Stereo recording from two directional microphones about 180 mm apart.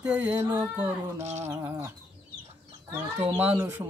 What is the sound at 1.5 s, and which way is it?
Mantra, 15° right (ahead or behind).